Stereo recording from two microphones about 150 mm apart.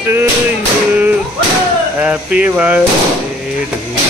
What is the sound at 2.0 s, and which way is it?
Speech, 10° right (ahead or behind).